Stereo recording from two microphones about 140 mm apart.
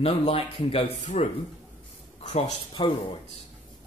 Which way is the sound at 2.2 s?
50° left (ahead or behind).